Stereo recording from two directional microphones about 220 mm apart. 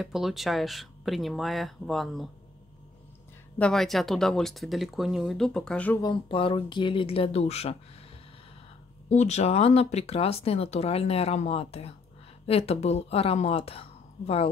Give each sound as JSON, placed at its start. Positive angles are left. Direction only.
{"t": 0.0, "sound": "speech", "side_deg": 0}
{"t": 3.5, "sound": "speech", "side_deg": 5}
{"t": 6.0, "sound": "speech", "side_deg": 25}
{"t": 9.1, "sound": "speech", "side_deg": 30}